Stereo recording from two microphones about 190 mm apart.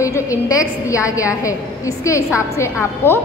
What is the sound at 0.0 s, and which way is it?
A woman's voice, 15° left (ahead or behind).